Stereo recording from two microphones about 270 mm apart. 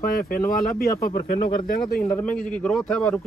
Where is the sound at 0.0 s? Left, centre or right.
Left.